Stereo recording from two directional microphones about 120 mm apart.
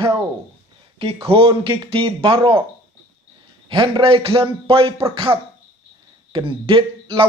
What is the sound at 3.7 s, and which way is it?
A man's voice, 45° right (ahead or behind).